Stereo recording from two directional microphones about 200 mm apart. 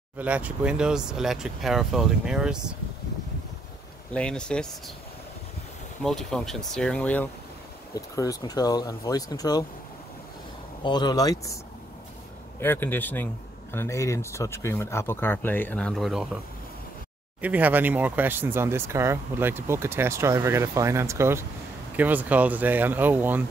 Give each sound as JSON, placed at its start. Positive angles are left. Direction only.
{"t": 0.2, "sound": "speech", "side_deg": -5}
{"t": 4.1, "sound": "speech", "side_deg": 5}
{"t": 6.0, "sound": "speech", "side_deg": 0}
{"t": 7.9, "sound": "speech", "side_deg": 20}
{"t": 10.8, "sound": "speech", "side_deg": 20}
{"t": 12.5, "sound": "speech", "side_deg": 10}
{"t": 17.4, "sound": "speech", "side_deg": -10}